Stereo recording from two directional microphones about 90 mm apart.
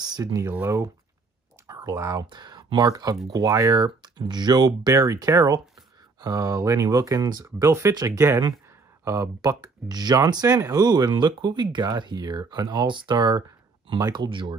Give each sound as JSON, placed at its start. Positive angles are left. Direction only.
{"t": 0.0, "sound": "speech", "side_deg": -45}
{"t": 2.2, "sound": "speech", "side_deg": -55}
{"t": 7.6, "sound": "speech", "side_deg": -35}
{"t": 7.9, "sound": "speech", "side_deg": -45}